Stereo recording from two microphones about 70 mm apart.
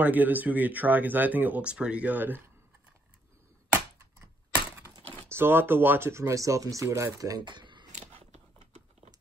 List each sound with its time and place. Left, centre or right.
0.0 s speech: right
5.3 s speech: right